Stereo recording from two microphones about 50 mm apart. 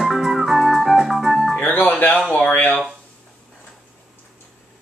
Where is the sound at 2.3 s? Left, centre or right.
Left.